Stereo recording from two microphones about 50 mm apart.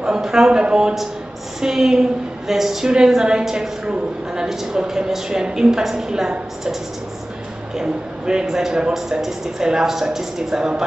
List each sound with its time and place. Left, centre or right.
0.0 s a man's voice: centre
7.7 s a man's voice: centre